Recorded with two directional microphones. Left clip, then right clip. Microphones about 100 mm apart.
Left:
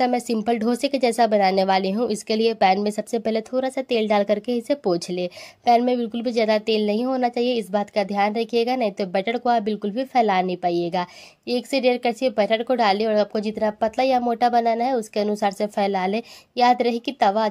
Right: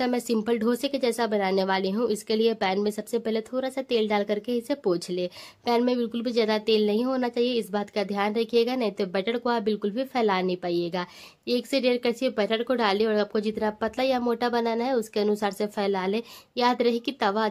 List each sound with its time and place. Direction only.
0.0 s speech: 35° left (ahead or behind)
5.8 s a woman's voice: 25° left (ahead or behind)